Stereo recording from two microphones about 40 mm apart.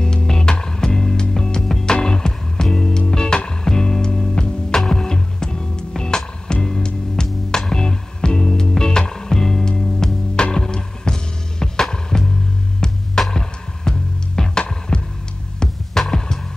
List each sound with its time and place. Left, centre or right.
0.0 s music: centre